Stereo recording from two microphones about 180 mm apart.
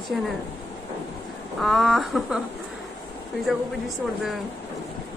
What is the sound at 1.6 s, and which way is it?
Speech, centre (ahead or behind).